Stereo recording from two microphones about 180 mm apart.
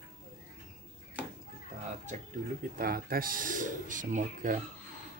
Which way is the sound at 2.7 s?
55° right (ahead or behind).